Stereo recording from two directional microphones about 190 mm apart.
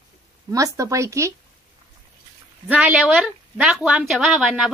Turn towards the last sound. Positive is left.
turn(degrees=-5)  # may be behind; listen again after turning